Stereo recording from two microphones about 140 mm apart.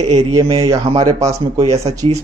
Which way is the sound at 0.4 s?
40° right (ahead or behind).